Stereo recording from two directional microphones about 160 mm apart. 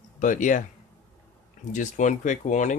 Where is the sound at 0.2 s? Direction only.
55° left (ahead or behind).